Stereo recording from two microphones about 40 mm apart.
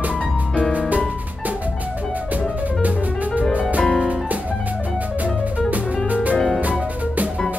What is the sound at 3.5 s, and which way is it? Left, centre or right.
Music, right.